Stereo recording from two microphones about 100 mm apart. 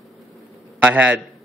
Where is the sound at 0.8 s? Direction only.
15° right (ahead or behind).